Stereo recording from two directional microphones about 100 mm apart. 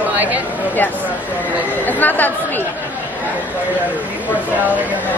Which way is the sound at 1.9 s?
15° left (ahead or behind).